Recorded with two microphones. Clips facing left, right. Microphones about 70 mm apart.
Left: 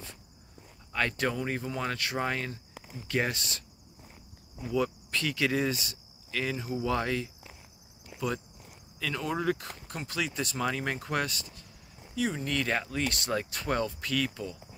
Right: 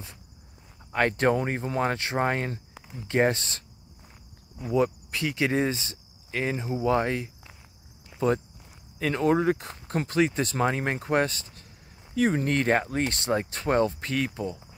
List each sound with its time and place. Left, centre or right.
0.9 s speech: right
4.6 s speech: right
9.0 s speech: right
10.0 s speech: right